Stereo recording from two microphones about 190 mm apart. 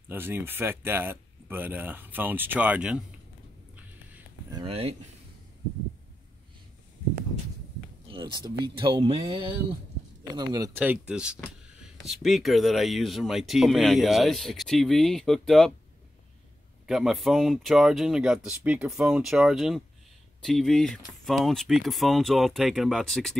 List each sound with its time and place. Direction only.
0.1 s speech: 10° right (ahead or behind)
3.7 s a sound: 10° right (ahead or behind)
4.6 s speech: 30° right (ahead or behind)
8.1 s speech: 25° right (ahead or behind)
10.8 s speech: 5° right (ahead or behind)
16.8 s speech: centre (ahead or behind)